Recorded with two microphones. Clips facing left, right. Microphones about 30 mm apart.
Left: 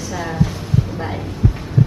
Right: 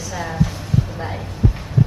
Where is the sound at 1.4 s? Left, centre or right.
Centre.